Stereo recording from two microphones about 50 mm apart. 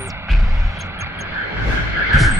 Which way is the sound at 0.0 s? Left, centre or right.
Right.